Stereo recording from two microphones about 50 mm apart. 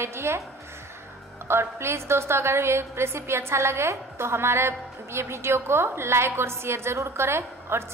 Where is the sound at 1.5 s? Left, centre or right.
Right.